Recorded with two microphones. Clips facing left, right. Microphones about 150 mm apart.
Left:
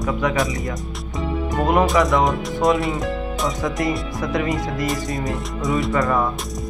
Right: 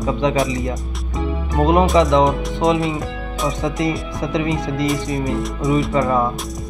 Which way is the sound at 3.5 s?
20° right (ahead or behind).